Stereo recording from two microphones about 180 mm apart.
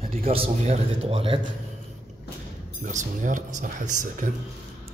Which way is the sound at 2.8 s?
45° right (ahead or behind).